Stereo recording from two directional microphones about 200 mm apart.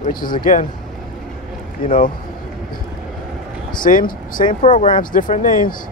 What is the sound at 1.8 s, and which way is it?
Speech, 45° left (ahead or behind).